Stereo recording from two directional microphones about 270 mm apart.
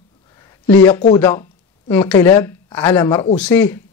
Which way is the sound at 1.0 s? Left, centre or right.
Centre.